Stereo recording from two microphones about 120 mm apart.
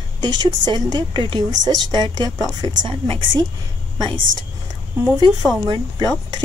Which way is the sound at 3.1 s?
45° right (ahead or behind).